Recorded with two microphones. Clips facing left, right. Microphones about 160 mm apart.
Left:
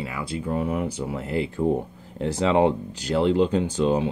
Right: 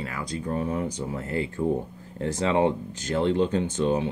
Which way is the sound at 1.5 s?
20° left (ahead or behind).